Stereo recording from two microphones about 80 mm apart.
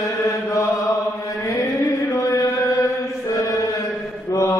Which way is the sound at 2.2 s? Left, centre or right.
Left.